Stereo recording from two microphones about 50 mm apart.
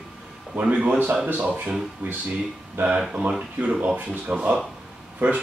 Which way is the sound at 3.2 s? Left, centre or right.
Centre.